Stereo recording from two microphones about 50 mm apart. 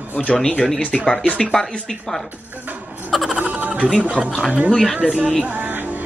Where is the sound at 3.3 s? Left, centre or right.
Right.